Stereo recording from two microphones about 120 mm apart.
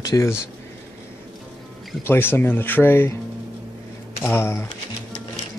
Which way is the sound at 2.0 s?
20° left (ahead or behind).